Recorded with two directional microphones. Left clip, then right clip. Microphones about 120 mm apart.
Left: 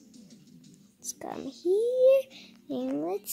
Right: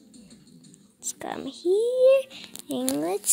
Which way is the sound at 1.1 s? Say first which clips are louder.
Right 4 dB; 10° left (ahead or behind).